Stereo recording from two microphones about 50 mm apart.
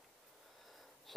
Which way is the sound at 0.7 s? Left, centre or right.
Centre.